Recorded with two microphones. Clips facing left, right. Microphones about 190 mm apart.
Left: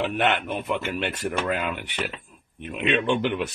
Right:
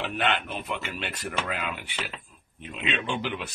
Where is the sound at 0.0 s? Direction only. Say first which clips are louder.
Left 4 dB; 50° left (ahead or behind).